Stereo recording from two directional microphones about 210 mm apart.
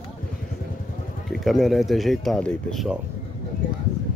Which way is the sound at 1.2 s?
Centre (ahead or behind).